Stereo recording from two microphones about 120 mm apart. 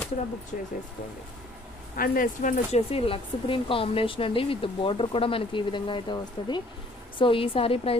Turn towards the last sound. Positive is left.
turn(degrees=50)  # may be behind; listen again after turning